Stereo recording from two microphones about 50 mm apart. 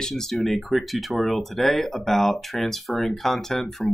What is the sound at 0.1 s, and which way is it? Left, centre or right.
Speech, centre.